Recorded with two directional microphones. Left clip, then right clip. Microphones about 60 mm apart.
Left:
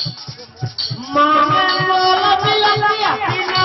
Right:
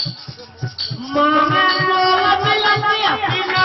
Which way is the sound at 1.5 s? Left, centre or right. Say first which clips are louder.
Left 1 dB; right.